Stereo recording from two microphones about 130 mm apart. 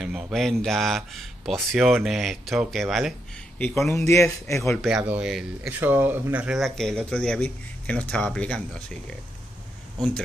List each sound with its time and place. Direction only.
0.0 s speech: centre (ahead or behind)
3.5 s speech: 15° left (ahead or behind)
4.8 s speech: 10° right (ahead or behind)
6.6 s speech: 5° left (ahead or behind)